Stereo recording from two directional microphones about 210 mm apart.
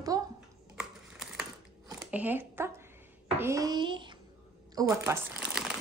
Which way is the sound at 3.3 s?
15° right (ahead or behind).